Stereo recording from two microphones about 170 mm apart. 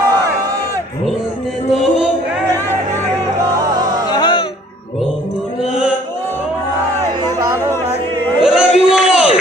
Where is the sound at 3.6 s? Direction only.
20° right (ahead or behind).